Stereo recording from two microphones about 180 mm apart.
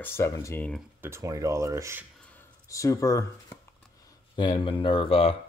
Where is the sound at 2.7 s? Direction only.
20° left (ahead or behind).